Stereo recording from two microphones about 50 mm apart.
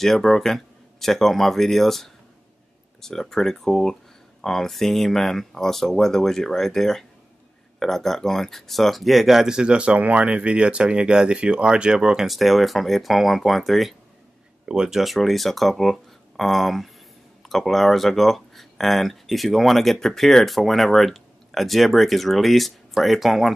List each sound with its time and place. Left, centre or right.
0.0 s speech: centre
12.3 s speech: centre
14.7 s speech: centre